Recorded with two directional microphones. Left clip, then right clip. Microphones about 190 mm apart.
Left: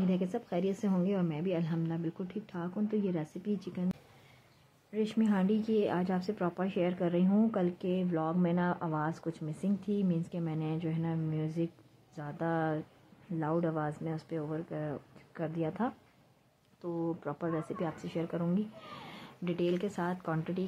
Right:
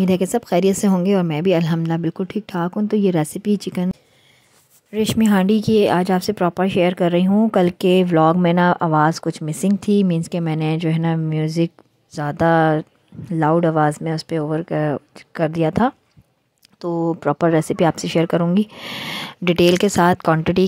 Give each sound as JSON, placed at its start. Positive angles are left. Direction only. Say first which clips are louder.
{"t": 0.1, "sound": "speech", "louder": "right 17 dB", "side_deg": -65}
{"t": 4.9, "sound": "speech", "louder": "right 14 dB", "side_deg": -55}